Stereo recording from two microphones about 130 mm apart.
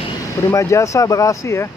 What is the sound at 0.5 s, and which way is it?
Speech, 25° left (ahead or behind).